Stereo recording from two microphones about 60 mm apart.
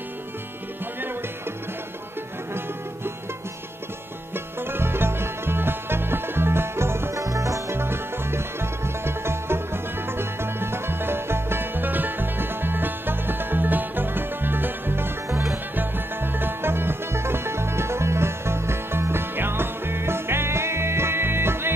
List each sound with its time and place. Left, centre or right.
4.6 s music: right
7.2 s music: right
7.7 s music: right
15.2 s music: right
15.7 s music: right